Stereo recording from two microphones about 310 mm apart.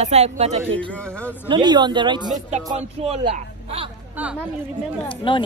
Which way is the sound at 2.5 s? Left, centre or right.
Right.